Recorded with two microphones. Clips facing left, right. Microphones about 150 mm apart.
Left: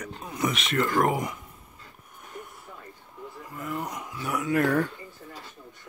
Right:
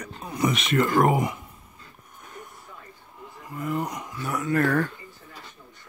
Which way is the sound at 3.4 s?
Centre (ahead or behind).